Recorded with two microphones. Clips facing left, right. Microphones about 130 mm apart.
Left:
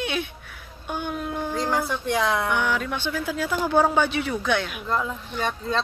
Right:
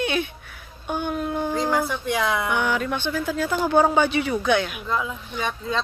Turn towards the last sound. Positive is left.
turn(degrees=0)  # may be behind; listen again after turning